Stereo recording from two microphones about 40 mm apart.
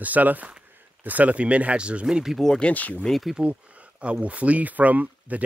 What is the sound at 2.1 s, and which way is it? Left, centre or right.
Speech, centre.